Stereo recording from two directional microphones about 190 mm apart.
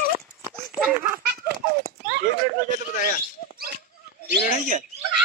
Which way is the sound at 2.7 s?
45° left (ahead or behind).